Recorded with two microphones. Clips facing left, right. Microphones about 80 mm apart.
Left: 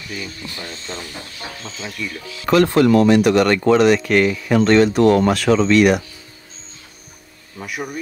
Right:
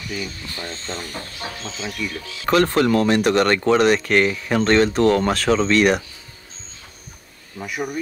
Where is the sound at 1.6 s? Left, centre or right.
Centre.